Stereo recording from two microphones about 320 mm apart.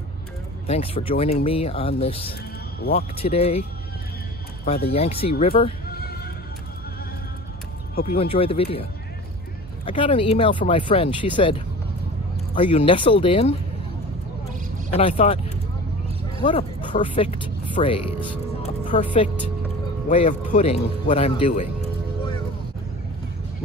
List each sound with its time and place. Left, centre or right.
0.7 s speech: centre
2.8 s speech: left
3.2 s speech: centre
4.6 s speech: centre
7.9 s speech: left
9.8 s speech: centre
15.0 s speech: centre
20.1 s speech: left